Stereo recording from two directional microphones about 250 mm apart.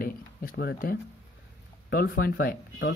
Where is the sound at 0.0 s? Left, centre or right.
Left.